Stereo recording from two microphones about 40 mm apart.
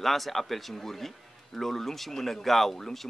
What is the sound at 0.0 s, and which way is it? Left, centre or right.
A man's voice, centre.